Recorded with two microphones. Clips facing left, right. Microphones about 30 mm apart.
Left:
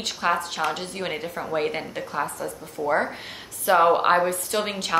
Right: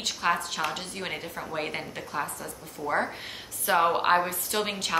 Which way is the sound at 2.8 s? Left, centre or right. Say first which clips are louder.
Left 7 dB; left.